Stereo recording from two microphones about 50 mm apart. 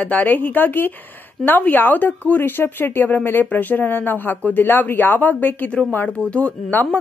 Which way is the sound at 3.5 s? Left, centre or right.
Left.